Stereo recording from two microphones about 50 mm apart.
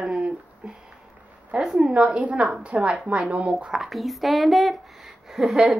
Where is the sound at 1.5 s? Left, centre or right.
Centre.